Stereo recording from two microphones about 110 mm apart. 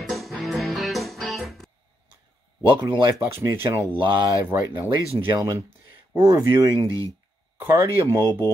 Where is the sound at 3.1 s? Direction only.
20° right (ahead or behind).